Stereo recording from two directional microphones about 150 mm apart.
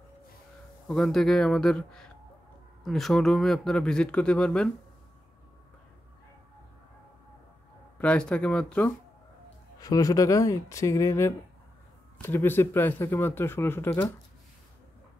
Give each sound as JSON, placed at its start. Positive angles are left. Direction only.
{"t": 0.8, "sound": "speech", "side_deg": 5}
{"t": 8.0, "sound": "speech", "side_deg": 5}
{"t": 9.8, "sound": "speech", "side_deg": 25}